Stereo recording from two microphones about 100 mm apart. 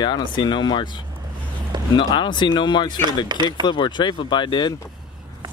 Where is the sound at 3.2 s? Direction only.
50° right (ahead or behind).